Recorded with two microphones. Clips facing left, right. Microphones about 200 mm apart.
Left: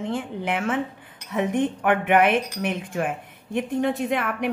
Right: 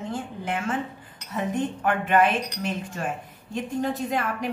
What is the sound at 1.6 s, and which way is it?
A woman's voice, 60° left (ahead or behind).